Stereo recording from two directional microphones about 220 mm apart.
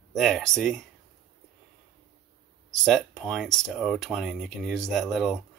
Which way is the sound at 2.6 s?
Centre (ahead or behind).